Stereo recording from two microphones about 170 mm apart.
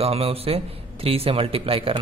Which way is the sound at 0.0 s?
35° right (ahead or behind).